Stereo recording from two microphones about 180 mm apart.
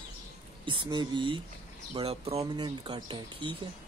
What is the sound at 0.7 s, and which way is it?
Speech, 25° right (ahead or behind).